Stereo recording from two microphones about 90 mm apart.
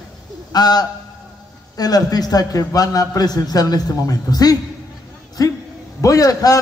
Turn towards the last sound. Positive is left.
turn(degrees=40)  # may be behind; listen again after turning